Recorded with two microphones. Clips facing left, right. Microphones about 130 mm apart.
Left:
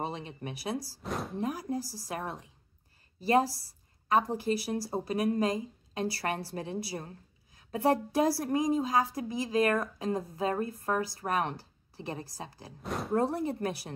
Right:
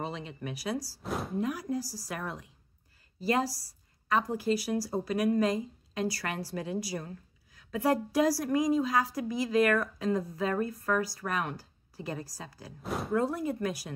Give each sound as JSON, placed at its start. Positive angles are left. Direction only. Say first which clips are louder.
{"t": 0.2, "sound": "a woman's voice", "louder": "right 1 dB", "side_deg": 25}
{"t": 1.0, "sound": "speech", "louder": "right 1 dB", "side_deg": 0}
{"t": 1.4, "sound": "a woman's voice", "louder": "even", "side_deg": 30}
{"t": 4.1, "sound": "a woman's voice", "louder": "left 1 dB", "side_deg": 25}
{"t": 12.8, "sound": "speech", "louder": "right 1 dB", "side_deg": 0}
{"t": 13.1, "sound": "speech", "louder": "left 1 dB", "side_deg": 35}